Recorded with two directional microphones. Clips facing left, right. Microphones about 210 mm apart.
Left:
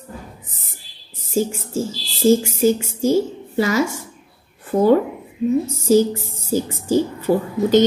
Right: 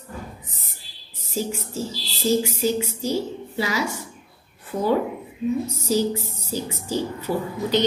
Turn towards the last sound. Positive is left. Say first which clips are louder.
# left 7 dB
turn(degrees=45)  # may be behind; listen again after turning